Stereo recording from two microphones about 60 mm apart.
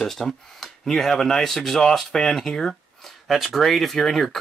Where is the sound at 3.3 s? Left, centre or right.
Centre.